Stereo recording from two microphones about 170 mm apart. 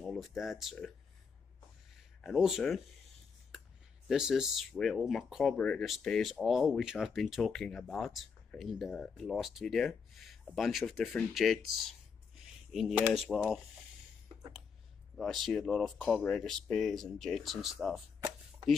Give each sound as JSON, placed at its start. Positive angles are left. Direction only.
{"t": 0.0, "sound": "speech", "side_deg": 0}
{"t": 2.2, "sound": "speech", "side_deg": 0}
{"t": 3.5, "sound": "a sound", "side_deg": 0}
{"t": 4.1, "sound": "speech", "side_deg": -5}
{"t": 12.9, "sound": "speech", "side_deg": -5}
{"t": 15.1, "sound": "speech", "side_deg": 0}